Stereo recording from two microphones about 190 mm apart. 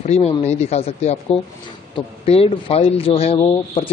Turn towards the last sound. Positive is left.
turn(degrees=30)  # may be behind; listen again after turning